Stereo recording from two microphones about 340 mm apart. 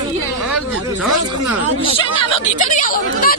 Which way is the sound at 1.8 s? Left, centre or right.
Centre.